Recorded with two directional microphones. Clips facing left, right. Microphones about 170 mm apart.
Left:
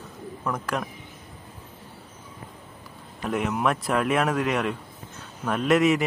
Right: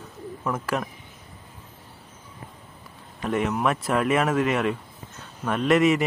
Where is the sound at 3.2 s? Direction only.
Centre (ahead or behind).